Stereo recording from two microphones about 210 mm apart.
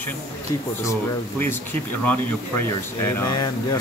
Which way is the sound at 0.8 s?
10° left (ahead or behind).